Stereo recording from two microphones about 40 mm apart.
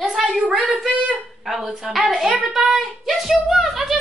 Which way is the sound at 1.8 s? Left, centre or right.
Centre.